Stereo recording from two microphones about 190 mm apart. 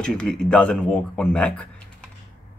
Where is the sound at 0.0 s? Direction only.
5° left (ahead or behind).